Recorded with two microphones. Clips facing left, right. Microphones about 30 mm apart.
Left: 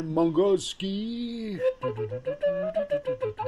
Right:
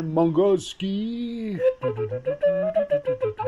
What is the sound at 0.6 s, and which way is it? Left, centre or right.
Speech, left.